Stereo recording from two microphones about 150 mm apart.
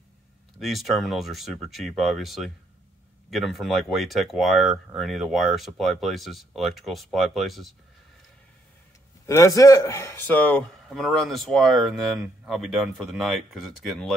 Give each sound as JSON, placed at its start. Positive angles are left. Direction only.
{"t": 0.6, "sound": "speech", "side_deg": 0}
{"t": 9.2, "sound": "a man's voice", "side_deg": 20}
{"t": 10.9, "sound": "speech", "side_deg": 0}